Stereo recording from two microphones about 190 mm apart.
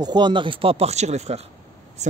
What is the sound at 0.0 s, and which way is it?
Speech, 25° right (ahead or behind).